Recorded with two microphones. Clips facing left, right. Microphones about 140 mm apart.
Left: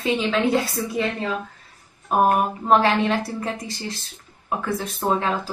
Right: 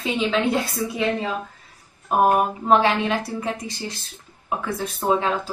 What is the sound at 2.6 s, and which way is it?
Speech, centre (ahead or behind).